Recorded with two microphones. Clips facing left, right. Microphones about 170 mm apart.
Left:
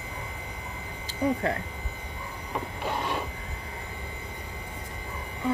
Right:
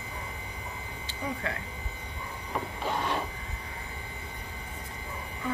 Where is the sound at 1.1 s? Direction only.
35° left (ahead or behind).